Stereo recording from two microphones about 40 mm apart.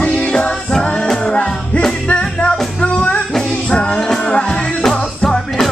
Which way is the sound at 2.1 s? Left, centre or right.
Left.